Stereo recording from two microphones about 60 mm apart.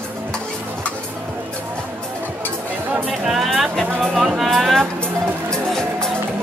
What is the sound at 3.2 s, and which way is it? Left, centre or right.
Speech, centre.